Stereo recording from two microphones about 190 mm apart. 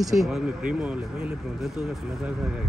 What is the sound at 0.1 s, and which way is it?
Speech, centre (ahead or behind).